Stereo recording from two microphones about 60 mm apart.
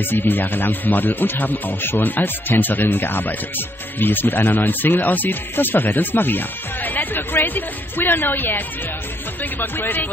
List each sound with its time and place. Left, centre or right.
0.0 s speech: left